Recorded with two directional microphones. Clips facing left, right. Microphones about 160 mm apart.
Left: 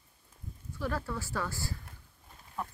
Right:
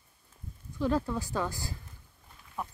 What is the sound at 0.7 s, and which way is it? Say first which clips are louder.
Speech: right 6 dB; 20° right (ahead or behind).